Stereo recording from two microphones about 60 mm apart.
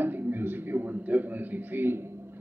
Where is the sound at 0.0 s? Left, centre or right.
Right.